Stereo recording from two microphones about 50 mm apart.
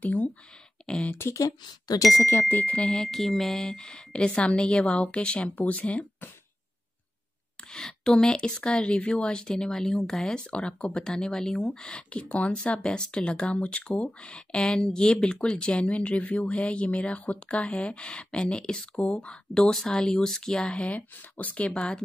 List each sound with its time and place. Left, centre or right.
0.0 s speech: left
0.8 s a sound: centre
1.1 s speech: left
2.4 s speech: left
2.8 s a woman's voice: centre
3.1 s a woman's voice: centre; by 5.5 s left
5.6 s speech: left
7.7 s a woman's voice: centre